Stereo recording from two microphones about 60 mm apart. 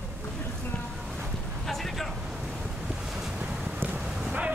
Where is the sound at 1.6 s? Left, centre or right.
Centre.